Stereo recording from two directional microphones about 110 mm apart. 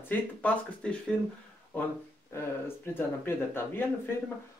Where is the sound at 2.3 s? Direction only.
20° left (ahead or behind).